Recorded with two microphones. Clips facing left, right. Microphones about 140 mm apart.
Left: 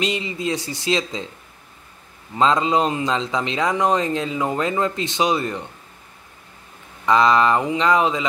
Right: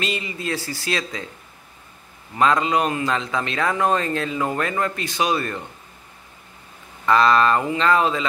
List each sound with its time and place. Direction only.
0.0 s speech: 20° left (ahead or behind)
2.3 s speech: 20° left (ahead or behind)
7.1 s a sound: 20° left (ahead or behind)